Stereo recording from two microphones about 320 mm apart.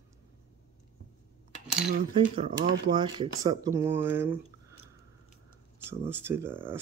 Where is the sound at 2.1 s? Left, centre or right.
Centre.